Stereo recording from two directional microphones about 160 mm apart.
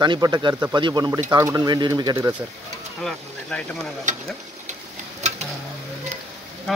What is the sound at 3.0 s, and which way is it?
Speech, 5° left (ahead or behind).